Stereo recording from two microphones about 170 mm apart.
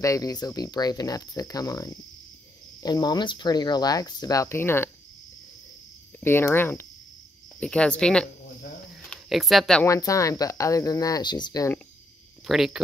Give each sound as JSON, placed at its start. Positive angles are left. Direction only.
{"t": 0.0, "sound": "speech", "side_deg": 20}
{"t": 6.2, "sound": "speech", "side_deg": 15}
{"t": 9.8, "sound": "speech", "side_deg": 20}
{"t": 12.4, "sound": "speech", "side_deg": 0}